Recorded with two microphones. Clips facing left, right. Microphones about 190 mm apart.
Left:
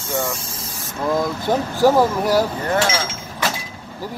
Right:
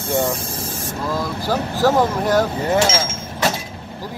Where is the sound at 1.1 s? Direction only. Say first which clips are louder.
Left 3 dB; 20° left (ahead or behind).